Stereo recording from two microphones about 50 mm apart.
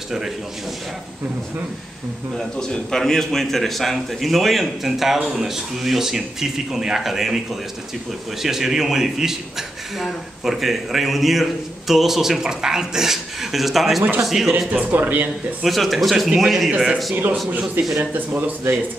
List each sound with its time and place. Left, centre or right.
2.3 s a man's voice: centre
14.9 s speech: right
15.6 s a man's voice: centre
17.1 s speech: right